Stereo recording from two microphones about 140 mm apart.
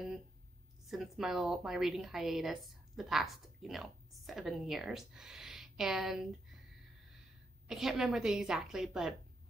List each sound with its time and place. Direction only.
0.8 s a woman's voice: centre (ahead or behind)